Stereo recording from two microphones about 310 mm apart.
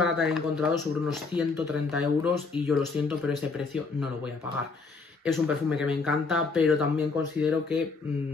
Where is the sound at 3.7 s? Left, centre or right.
Centre.